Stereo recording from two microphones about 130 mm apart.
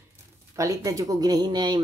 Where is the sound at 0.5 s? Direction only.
25° right (ahead or behind).